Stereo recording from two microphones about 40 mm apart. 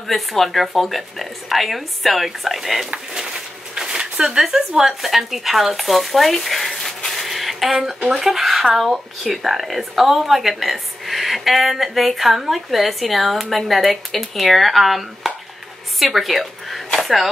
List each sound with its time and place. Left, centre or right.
0.0 s speech: centre
3.2 s speech: centre
7.1 s a sound: centre
7.7 s speech: centre
8.2 s speech: centre
16.0 s a sound: centre